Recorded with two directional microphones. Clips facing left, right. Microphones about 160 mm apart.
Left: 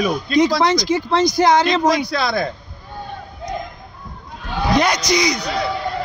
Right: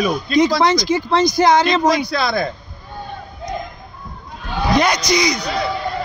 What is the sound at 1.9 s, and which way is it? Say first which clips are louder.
Speech: right 1 dB; 85° right.